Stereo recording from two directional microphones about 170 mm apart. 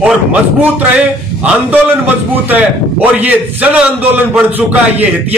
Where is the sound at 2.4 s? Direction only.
10° right (ahead or behind).